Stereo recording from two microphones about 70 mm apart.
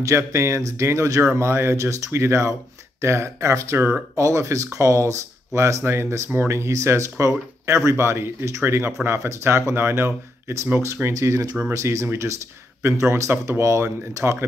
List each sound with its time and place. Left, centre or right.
0.0 s speech: right